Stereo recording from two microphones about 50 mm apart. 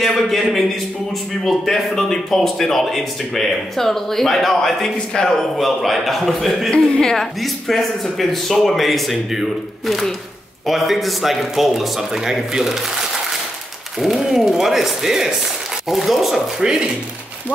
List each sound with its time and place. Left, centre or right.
0.0 s a man's voice: centre
5.1 s a man's voice: centre
5.6 s a man's voice: centre
6.7 s a man's voice: centre
13.9 s a man's voice: centre
16.6 s speech: centre